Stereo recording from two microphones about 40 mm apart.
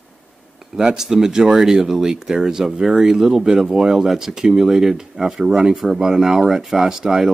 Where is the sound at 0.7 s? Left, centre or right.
Centre.